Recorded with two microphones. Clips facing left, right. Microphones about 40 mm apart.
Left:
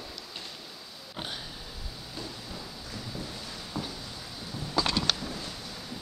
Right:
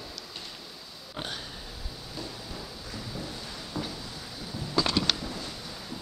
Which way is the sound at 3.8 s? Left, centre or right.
Centre.